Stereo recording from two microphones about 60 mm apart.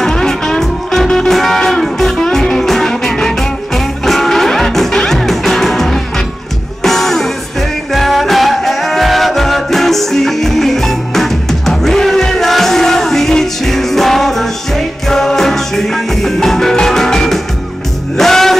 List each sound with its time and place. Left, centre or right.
0.0 s music: centre